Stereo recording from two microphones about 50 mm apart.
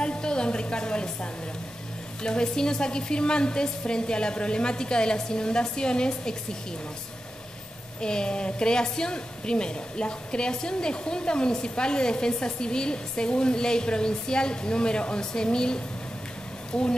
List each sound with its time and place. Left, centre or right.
0.0 s music: centre
2.2 s a woman's voice: centre
8.0 s a woman's voice: centre